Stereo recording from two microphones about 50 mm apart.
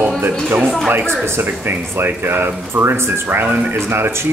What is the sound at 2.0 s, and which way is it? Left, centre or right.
Speech, right.